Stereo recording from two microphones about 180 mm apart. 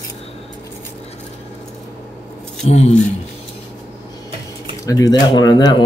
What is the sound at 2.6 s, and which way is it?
Speech, 40° left (ahead or behind).